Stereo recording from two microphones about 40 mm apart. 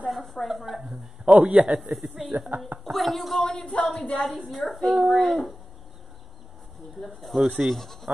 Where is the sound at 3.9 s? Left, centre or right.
Left.